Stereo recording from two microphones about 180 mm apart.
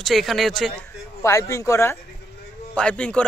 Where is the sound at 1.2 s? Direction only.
15° left (ahead or behind).